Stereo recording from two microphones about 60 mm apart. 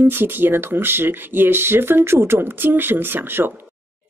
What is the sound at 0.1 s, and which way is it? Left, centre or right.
Speech, right.